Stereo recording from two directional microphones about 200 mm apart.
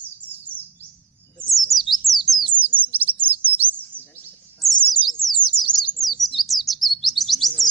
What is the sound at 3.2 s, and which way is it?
Chirp, 10° right (ahead or behind).